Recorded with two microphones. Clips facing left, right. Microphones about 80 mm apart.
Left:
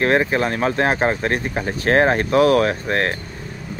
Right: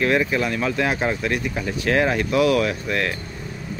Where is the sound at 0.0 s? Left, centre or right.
Left.